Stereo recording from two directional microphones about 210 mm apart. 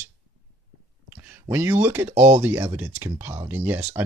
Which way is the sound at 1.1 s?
5° right (ahead or behind).